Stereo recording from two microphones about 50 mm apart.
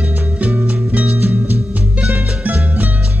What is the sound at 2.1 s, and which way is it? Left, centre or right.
Music, right.